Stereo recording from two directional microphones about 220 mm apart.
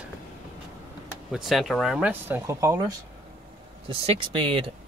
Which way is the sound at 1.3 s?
Centre (ahead or behind).